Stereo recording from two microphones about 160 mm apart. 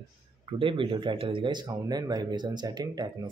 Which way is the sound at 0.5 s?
30° right (ahead or behind).